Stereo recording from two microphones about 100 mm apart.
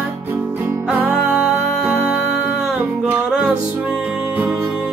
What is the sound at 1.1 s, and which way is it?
Music, 5° right (ahead or behind).